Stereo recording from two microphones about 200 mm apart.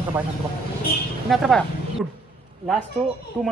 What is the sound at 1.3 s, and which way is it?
Speech, centre (ahead or behind).